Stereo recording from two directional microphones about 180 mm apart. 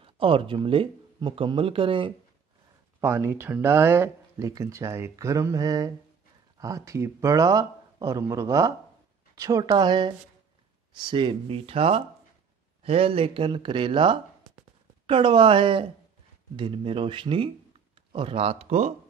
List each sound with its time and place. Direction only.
0.0 s speech: 30° right (ahead or behind)
3.0 s speech: 15° right (ahead or behind); by 18.9 s 35° right (ahead or behind)